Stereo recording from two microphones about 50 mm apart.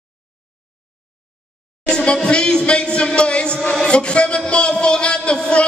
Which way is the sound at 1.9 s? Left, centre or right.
Centre.